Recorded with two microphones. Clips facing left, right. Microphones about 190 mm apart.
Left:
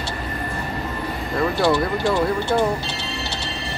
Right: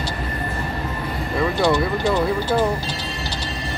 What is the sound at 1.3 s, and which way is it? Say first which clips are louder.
Speech: even; 5° left (ahead or behind).